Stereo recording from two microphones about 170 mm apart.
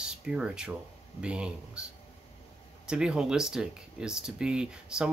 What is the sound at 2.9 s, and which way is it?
Speech, 5° right (ahead or behind).